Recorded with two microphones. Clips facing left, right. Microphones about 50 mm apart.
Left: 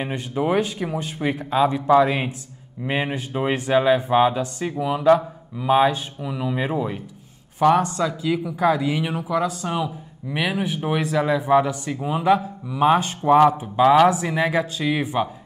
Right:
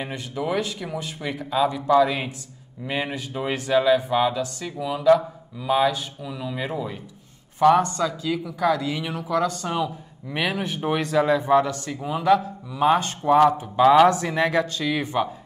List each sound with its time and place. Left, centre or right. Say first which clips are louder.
0.0 s speech: left 4 dB; left
7.5 s speech: even; centre
13.7 s speech: even; centre